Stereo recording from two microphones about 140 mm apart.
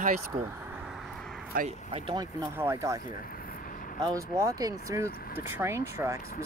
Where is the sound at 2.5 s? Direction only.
20° right (ahead or behind).